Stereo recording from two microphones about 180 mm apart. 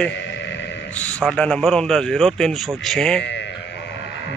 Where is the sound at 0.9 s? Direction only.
10° left (ahead or behind).